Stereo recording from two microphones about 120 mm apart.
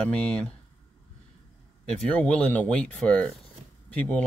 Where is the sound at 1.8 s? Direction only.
10° left (ahead or behind).